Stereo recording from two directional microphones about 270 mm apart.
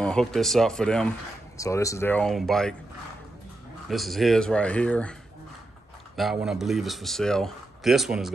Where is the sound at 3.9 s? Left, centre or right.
Centre.